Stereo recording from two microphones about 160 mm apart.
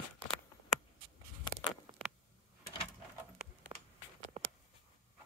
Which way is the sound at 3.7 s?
20° right (ahead or behind).